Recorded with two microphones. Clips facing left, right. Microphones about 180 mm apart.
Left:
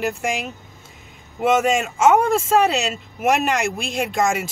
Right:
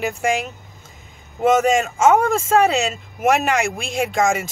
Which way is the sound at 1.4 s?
45° right (ahead or behind).